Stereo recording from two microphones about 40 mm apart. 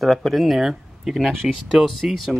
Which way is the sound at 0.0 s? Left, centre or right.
Centre.